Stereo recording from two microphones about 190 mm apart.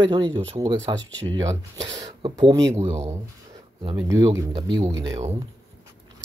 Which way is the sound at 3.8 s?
20° right (ahead or behind).